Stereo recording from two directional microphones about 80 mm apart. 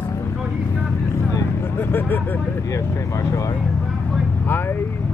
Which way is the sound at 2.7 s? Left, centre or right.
Left.